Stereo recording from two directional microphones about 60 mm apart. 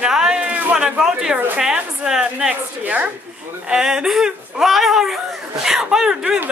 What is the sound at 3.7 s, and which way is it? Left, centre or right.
Speech, centre.